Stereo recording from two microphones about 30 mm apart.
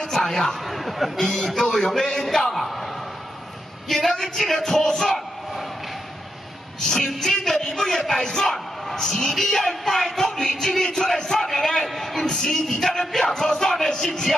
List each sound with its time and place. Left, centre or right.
0.1 s speech: centre
0.7 s speech: centre
1.1 s speech: centre
2.5 s speech: centre
3.9 s speech: centre
6.8 s speech: centre
11.9 s speech: centre
12.2 s speech: centre
12.7 s music: left
13.0 s speech: centre